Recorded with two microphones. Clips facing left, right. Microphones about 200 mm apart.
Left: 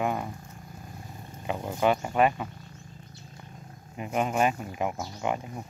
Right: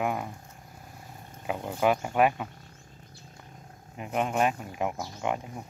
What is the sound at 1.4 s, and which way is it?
Speech, 5° right (ahead or behind).